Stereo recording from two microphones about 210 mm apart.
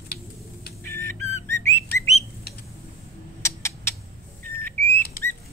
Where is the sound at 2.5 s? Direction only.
50° left (ahead or behind).